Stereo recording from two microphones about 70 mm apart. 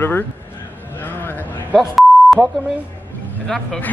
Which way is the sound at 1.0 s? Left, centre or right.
Left.